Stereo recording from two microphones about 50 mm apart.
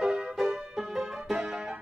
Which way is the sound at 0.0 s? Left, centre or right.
Centre.